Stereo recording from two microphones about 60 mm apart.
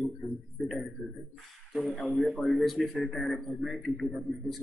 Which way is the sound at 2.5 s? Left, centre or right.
Centre.